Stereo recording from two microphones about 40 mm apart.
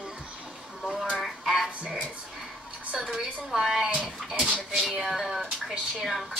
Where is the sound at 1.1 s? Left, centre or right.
Centre.